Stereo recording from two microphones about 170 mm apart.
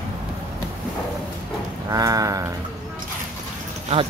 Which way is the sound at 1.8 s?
20° right (ahead or behind).